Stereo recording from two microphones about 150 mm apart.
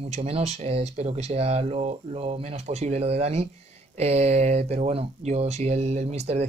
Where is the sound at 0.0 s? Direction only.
40° right (ahead or behind).